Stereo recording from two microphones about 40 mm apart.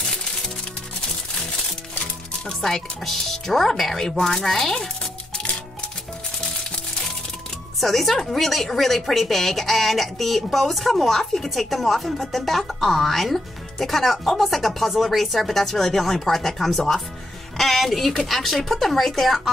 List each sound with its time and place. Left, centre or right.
2.4 s speech: centre
5.3 s music: left
7.8 s speech: centre